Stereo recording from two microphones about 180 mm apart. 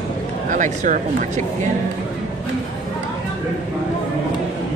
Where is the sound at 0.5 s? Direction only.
45° right (ahead or behind).